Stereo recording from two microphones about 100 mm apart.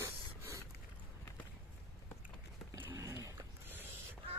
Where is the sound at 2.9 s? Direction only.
30° right (ahead or behind).